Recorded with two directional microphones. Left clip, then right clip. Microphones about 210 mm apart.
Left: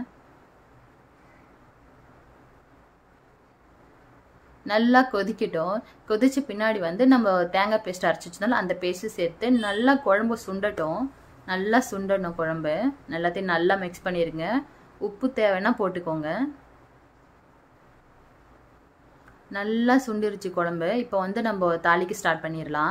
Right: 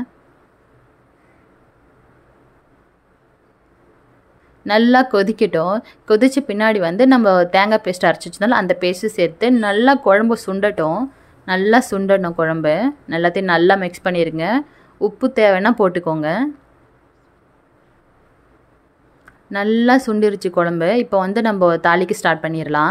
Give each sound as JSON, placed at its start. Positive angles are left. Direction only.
{"t": 4.6, "sound": "speech", "side_deg": -35}
{"t": 19.5, "sound": "speech", "side_deg": -35}